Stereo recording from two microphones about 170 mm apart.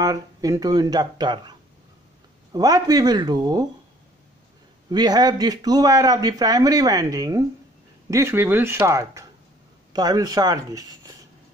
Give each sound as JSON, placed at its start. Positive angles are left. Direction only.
{"t": 0.0, "sound": "speech", "side_deg": -20}
{"t": 4.8, "sound": "speech", "side_deg": -25}